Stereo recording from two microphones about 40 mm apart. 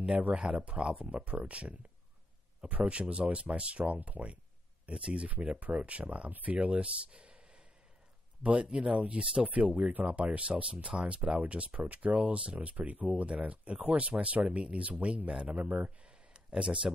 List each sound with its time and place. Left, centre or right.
0.4 s speech: centre
1.1 s speech: right
2.8 s speech: right
4.8 s speech: right
5.6 s speech: right
6.8 s a sound: right
8.4 s speech: right
16.0 s a sound: right